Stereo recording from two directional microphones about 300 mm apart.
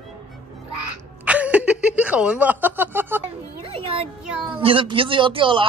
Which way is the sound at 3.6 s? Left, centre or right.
Centre.